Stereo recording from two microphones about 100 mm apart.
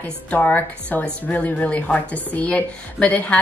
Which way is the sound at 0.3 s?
15° left (ahead or behind).